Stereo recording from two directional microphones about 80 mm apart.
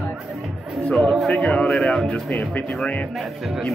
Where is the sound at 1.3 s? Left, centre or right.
Centre.